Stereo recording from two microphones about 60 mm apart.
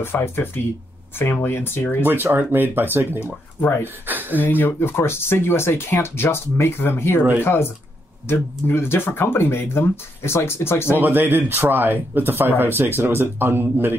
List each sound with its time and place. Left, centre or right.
0.0 s speech: left
2.0 s speech: right
3.6 s speech: left
4.1 s a sound: right
4.4 s speech: left
4.7 s speech: left
11.0 s speech: right